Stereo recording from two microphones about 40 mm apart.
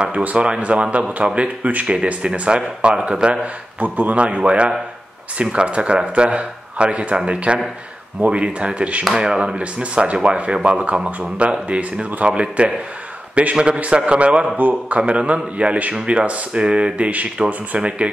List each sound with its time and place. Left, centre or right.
0.2 s speech: right
3.8 s speech: right
9.1 s speech: centre
14.6 s speech: right
15.0 s speech: right